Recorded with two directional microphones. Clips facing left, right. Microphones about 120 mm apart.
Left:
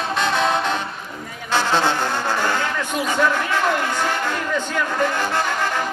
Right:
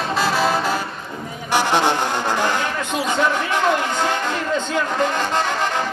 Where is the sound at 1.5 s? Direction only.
15° right (ahead or behind).